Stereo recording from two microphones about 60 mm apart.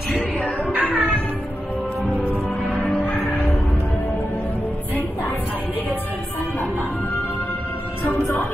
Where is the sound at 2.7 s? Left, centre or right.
Left.